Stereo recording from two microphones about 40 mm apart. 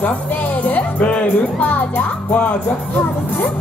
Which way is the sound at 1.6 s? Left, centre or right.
Left.